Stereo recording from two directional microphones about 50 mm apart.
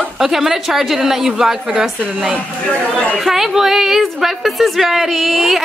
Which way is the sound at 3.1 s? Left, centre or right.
Centre.